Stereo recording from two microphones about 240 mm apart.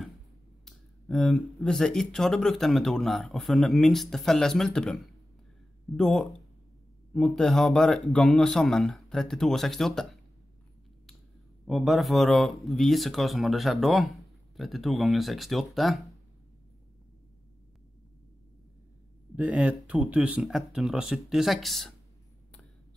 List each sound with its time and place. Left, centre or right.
0.7 s speech: centre
11.6 s speech: centre
19.3 s speech: centre